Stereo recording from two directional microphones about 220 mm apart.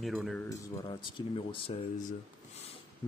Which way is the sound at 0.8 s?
20° left (ahead or behind).